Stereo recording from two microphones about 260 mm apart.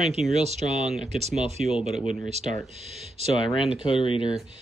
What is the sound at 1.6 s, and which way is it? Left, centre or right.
Speech, centre.